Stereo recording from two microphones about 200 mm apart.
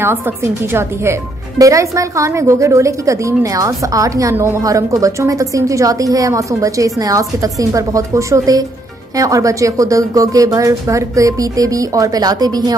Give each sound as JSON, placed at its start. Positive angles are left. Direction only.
{"t": 0.0, "sound": "a woman's voice", "side_deg": -10}